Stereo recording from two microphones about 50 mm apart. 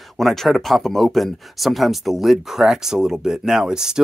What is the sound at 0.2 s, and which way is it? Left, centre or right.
Speech, centre.